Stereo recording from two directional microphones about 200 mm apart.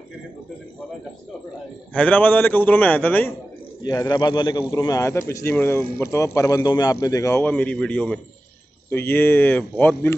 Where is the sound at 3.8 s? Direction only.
20° left (ahead or behind).